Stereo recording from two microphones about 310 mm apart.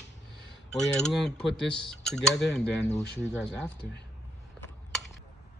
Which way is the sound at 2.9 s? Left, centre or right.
Left.